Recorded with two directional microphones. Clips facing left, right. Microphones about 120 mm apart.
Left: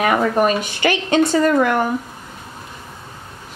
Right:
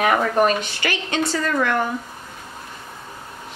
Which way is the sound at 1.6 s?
10° left (ahead or behind).